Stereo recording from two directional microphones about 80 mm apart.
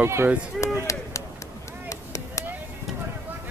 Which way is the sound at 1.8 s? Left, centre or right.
Left.